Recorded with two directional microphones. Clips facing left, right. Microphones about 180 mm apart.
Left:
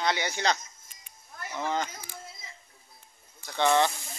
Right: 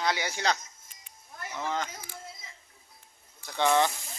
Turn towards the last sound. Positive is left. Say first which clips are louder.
# left 1 dB
turn(degrees=-10)  # may be behind; listen again after turning